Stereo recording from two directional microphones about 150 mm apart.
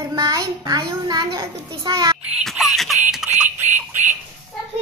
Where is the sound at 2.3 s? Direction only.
Centre (ahead or behind).